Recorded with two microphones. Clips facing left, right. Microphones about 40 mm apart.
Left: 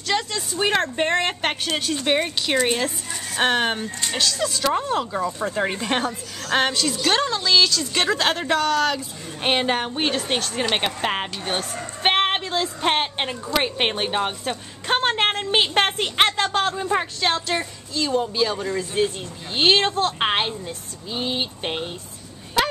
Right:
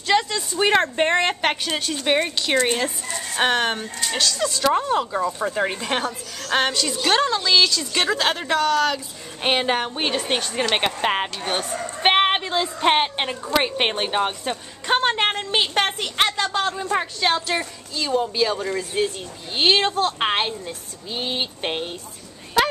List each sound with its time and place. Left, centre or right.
0.0 s a sound: centre
0.6 s a woman's voice: centre
15.5 s a woman's voice: centre
16.5 s a woman's voice: centre